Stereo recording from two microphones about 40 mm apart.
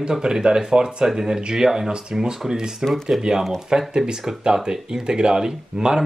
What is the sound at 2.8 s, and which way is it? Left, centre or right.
Speech, centre.